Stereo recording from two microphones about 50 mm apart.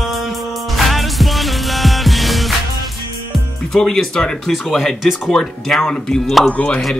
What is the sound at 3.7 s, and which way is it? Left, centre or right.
Speech, centre.